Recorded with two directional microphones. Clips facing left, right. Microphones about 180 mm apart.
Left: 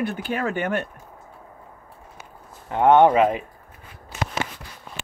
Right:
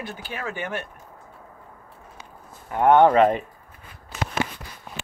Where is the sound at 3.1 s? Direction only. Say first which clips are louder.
Right 1 dB; 5° left (ahead or behind).